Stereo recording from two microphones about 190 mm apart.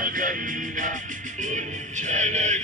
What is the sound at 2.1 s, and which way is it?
Music, 40° right (ahead or behind).